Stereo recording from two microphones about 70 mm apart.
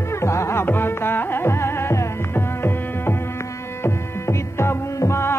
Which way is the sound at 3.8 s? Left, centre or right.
Left.